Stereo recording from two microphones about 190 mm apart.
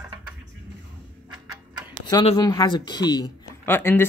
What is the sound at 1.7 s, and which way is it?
Tick-tock, 5° right (ahead or behind).